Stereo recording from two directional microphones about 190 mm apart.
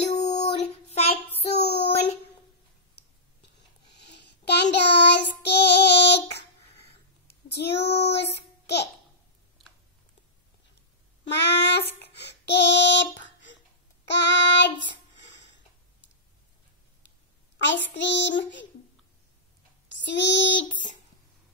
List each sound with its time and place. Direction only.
0.0 s child singing: 35° left (ahead or behind)
1.6 s a sound: 60° left (ahead or behind)
4.5 s child singing: 60° left (ahead or behind)
7.2 s a sound: 60° left (ahead or behind)
8.0 s child singing: 65° left (ahead or behind)
11.3 s child singing: 65° left (ahead or behind)
17.6 s child singing: 70° left (ahead or behind)
19.9 s child singing: 70° left (ahead or behind)
20.6 s a sound: 40° left (ahead or behind)